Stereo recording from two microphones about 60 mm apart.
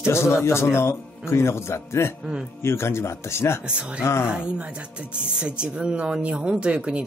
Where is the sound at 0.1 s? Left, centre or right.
Left.